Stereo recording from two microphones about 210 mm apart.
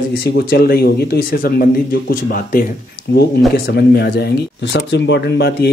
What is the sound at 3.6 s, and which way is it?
Speech, 50° left (ahead or behind).